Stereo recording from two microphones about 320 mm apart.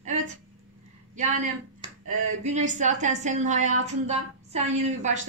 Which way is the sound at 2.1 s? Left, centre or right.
Right.